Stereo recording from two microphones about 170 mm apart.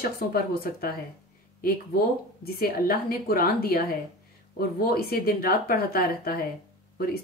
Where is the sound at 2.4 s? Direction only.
65° left (ahead or behind).